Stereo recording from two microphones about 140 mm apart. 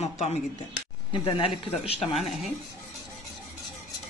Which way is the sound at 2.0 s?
Centre (ahead or behind).